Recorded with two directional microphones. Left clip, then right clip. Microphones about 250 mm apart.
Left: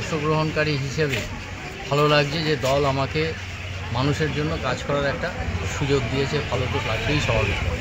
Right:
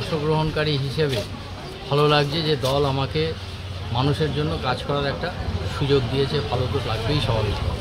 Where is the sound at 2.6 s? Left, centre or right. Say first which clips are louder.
Left 1 dB; centre.